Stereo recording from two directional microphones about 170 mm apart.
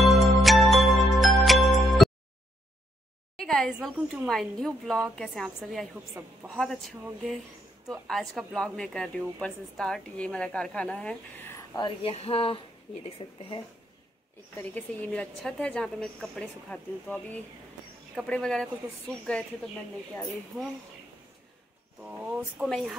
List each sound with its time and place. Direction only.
0.0 s music: centre (ahead or behind)
3.3 s a woman's voice: centre (ahead or behind)
11.7 s a woman's voice: 30° left (ahead or behind)
14.6 s a woman's voice: 10° left (ahead or behind)
22.0 s a woman's voice: 5° right (ahead or behind)